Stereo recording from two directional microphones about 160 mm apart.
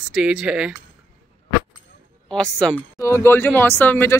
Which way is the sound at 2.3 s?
5° left (ahead or behind).